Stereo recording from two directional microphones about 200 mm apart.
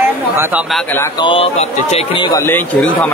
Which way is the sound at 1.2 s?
30° left (ahead or behind).